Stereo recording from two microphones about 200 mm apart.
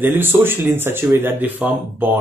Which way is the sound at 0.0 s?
10° right (ahead or behind).